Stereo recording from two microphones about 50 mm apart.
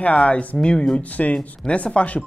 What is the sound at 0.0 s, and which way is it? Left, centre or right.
Speech, left.